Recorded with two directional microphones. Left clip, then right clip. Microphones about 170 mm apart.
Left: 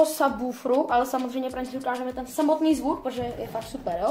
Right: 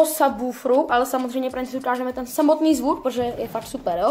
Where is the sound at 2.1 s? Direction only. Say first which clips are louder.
Right 5 dB; 40° right (ahead or behind).